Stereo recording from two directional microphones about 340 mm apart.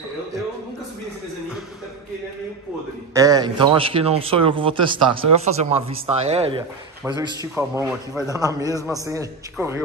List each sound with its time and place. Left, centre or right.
3.2 s speech: centre